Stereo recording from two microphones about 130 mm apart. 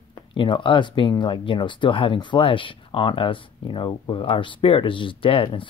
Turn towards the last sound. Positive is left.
turn(degrees=40)  # may be behind; listen again after turning